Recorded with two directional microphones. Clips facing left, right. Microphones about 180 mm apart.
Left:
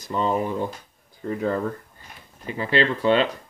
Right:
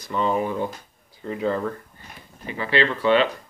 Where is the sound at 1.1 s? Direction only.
45° left (ahead or behind).